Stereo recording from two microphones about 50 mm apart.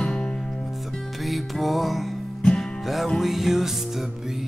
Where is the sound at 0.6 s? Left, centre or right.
Centre.